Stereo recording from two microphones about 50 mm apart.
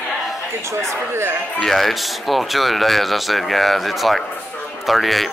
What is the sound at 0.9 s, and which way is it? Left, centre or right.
Speech, right.